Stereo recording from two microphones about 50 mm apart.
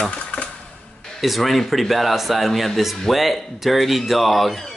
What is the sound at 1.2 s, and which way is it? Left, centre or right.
Speech, centre.